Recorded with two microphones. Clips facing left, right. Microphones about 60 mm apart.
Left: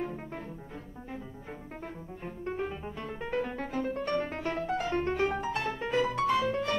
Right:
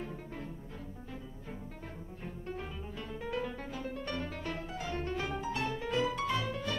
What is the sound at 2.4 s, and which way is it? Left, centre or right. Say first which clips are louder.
Music: left 9 dB; left.